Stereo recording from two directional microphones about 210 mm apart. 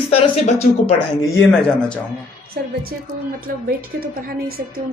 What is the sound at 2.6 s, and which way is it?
A woman's voice, 45° right (ahead or behind).